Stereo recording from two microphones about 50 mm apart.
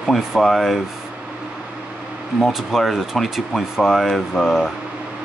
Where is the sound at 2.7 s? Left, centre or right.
Centre.